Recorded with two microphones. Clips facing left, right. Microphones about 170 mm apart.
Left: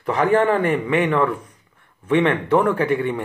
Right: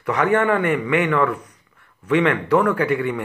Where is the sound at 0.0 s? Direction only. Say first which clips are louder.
Left 1 dB; 30° left (ahead or behind).